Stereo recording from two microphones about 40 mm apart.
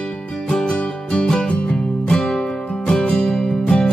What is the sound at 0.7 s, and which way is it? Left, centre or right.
Music, left.